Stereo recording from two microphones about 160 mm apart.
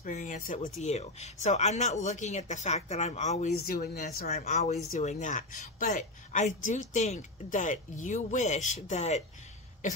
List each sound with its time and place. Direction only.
0.0 s speech: 55° left (ahead or behind)
0.7 s a woman's voice: 45° left (ahead or behind)
3.6 s speech: 75° left (ahead or behind)
4.3 s a woman's voice: 45° left (ahead or behind)